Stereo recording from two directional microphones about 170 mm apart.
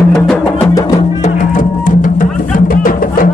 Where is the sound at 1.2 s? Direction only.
50° left (ahead or behind).